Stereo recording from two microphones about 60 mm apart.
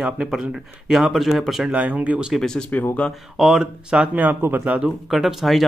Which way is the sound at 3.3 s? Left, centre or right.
Centre.